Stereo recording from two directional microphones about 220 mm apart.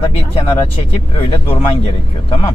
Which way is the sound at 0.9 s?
25° left (ahead or behind).